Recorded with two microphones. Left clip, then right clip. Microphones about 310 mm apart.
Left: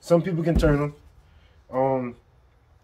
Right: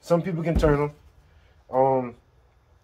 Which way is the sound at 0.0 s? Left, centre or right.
Centre.